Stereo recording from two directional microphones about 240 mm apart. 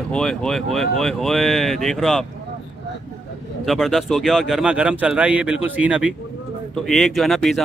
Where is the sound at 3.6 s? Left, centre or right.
Centre.